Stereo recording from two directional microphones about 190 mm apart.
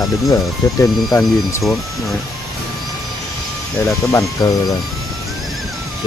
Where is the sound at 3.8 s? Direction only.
15° left (ahead or behind).